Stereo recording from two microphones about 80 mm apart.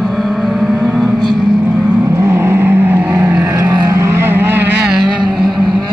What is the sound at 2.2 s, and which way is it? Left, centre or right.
Vehicle, right.